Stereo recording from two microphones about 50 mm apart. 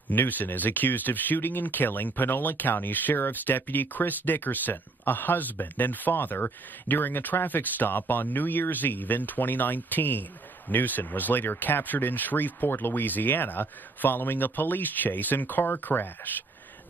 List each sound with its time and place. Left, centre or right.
0.1 s speech: left